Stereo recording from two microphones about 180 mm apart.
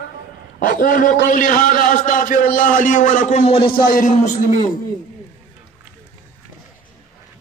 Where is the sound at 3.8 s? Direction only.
50° left (ahead or behind).